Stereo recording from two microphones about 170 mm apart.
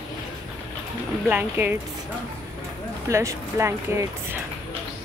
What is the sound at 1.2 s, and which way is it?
Speech, 10° right (ahead or behind).